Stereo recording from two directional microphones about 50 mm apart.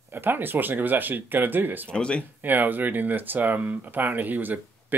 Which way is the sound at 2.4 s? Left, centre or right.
Right.